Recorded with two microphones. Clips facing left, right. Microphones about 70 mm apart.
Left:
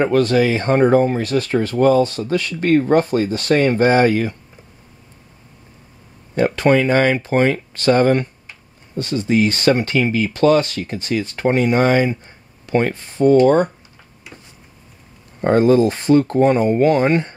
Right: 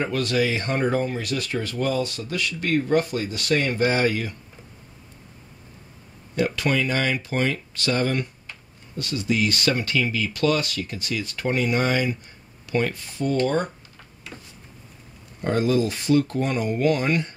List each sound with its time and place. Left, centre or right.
0.0 s speech: left
6.3 s speech: left
15.4 s speech: left